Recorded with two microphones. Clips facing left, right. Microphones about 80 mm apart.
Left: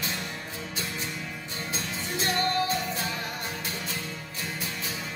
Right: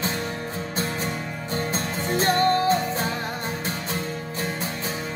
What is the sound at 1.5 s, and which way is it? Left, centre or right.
Music, right.